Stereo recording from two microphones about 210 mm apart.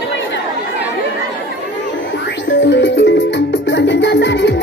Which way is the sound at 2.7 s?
60° left (ahead or behind).